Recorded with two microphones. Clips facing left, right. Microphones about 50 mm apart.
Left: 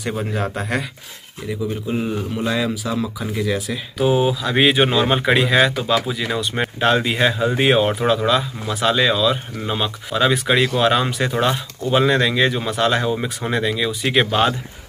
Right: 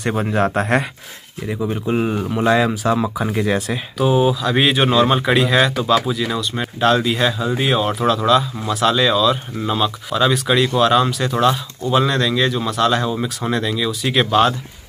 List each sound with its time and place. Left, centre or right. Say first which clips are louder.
0.3 s speech: right 9 dB; right
1.7 s speech: right 5 dB; right
3.2 s speech: right 4 dB; right
4.0 s speech: right 1 dB; centre
6.4 s speech: even; left
7.9 s speech: right 2 dB; centre